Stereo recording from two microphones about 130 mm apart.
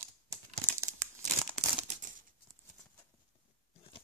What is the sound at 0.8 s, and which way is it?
Crumpling, 20° right (ahead or behind).